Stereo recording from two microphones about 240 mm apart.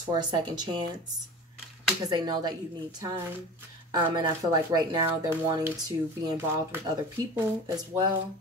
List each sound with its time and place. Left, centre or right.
0.0 s speech: centre
2.0 s speech: centre